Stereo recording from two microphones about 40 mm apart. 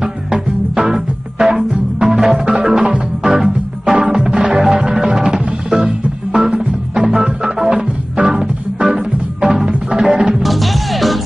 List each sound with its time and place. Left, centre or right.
0.0 s music: centre
7.2 s organ: centre
8.8 s music: centre
10.4 s music: centre